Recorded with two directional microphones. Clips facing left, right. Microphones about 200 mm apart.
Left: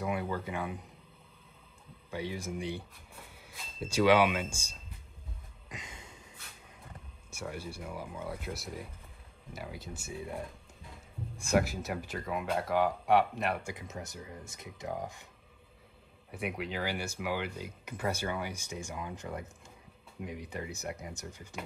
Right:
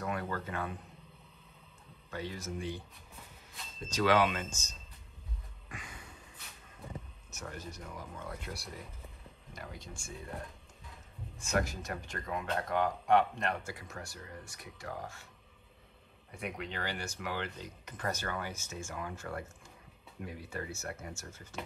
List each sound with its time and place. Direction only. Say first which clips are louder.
0.0 s speech: left 3 dB; 10° left (ahead or behind)
2.0 s speech: left 3 dB; 10° left (ahead or behind)
5.7 s a sound: left 1 dB; 25° left (ahead or behind)
7.2 s speech: left 6 dB; 10° left (ahead or behind)
11.5 s speech: left 4 dB; 5° left (ahead or behind)
16.3 s speech: left 4 dB; 5° left (ahead or behind)